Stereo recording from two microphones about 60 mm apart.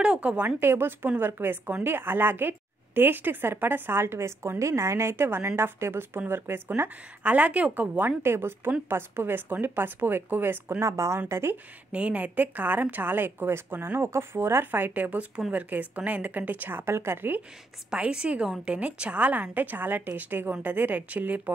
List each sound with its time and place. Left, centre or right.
0.0 s a woman's voice: centre
0.6 s speech: right
7.2 s a woman's voice: right
8.2 s speech: right
10.8 s a woman's voice: right
11.2 s speech: right
11.9 s a woman's voice: right
17.8 s a woman's voice: centre